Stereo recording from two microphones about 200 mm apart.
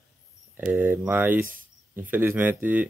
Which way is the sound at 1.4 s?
45° right (ahead or behind).